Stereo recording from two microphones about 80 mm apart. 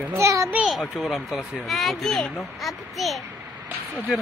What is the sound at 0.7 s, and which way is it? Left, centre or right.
A child's voice, centre.